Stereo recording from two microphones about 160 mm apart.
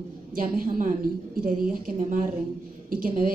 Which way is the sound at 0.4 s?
60° right (ahead or behind).